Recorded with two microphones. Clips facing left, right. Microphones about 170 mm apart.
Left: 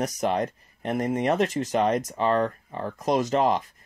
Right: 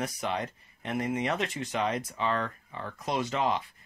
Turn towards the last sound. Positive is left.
turn(degrees=45)  # may be behind; listen again after turning